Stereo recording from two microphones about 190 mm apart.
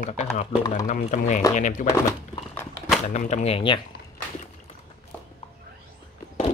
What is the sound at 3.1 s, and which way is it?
Speech, 40° left (ahead or behind).